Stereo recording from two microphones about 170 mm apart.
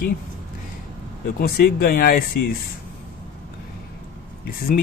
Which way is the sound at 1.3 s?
60° left (ahead or behind).